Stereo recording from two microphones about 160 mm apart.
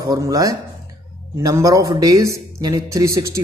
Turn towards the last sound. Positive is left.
turn(degrees=-20)  # may be behind; listen again after turning